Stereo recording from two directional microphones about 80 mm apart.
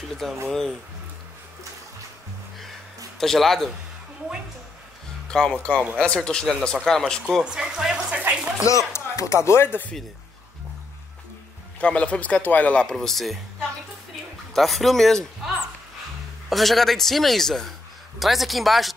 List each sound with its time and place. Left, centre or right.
0.2 s a man's voice: centre
3.2 s a man's voice: centre
5.3 s speech: centre
7.4 s speech: centre
8.6 s speech: left
11.8 s speech: centre
12.9 s a man's voice: centre